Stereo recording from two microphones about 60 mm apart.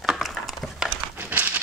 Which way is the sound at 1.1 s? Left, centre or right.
Right.